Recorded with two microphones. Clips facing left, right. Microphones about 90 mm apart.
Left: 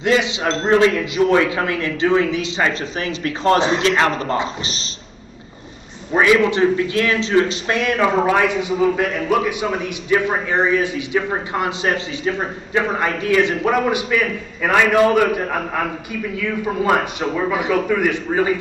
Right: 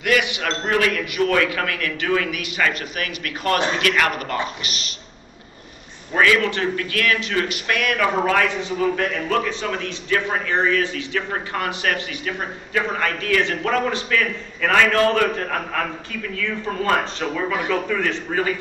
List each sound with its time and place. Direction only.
0.0 s a man's voice: 25° left (ahead or behind)
6.1 s a man's voice: 20° left (ahead or behind)